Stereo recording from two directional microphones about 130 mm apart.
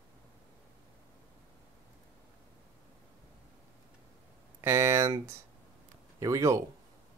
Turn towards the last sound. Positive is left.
turn(degrees=-25)  # may be behind; listen again after turning